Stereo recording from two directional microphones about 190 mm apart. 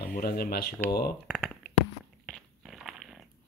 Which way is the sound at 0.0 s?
55° left (ahead or behind).